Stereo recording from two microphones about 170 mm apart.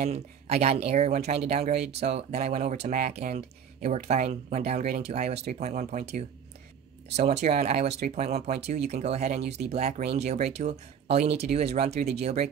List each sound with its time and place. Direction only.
0.0 s speech: 40° right (ahead or behind)